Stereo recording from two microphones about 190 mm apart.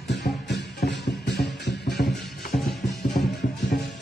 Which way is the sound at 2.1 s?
Centre (ahead or behind).